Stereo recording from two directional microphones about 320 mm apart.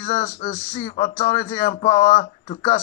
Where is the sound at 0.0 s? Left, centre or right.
Centre.